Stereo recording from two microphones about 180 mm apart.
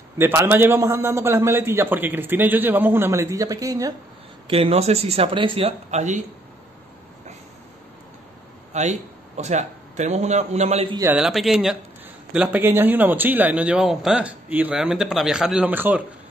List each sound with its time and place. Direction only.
0.2 s a man's voice: 15° right (ahead or behind)
4.5 s speech: 35° right (ahead or behind)
8.7 s a man's voice: 40° right (ahead or behind)
11.1 s a man's voice: centre (ahead or behind)